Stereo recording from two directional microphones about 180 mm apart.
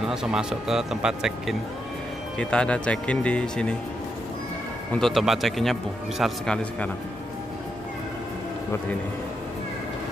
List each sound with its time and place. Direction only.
0.0 s speech: 5° right (ahead or behind)
4.9 s speech: centre (ahead or behind)